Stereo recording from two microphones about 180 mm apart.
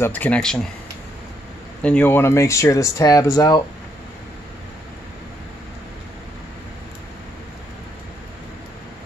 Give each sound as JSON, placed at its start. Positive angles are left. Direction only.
{"t": 0.0, "sound": "speech", "side_deg": 10}
{"t": 1.8, "sound": "speech", "side_deg": 5}